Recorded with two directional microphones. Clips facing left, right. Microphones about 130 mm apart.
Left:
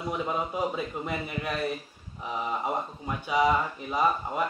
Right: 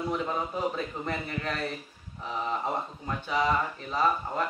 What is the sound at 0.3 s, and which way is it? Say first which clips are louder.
Speech: left 1 dB; 10° left (ahead or behind).